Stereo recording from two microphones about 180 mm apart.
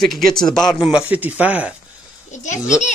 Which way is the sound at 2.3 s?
40° left (ahead or behind).